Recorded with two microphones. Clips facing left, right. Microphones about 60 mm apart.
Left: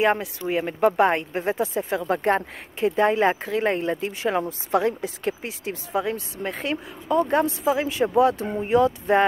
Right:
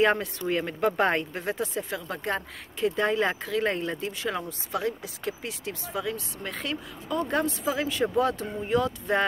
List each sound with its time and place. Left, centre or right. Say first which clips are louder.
0.0 s speech: left 2 dB; centre
1.3 s speech: left 6 dB; left